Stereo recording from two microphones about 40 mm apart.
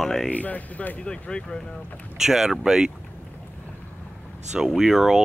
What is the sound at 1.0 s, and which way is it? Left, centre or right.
Speech, left.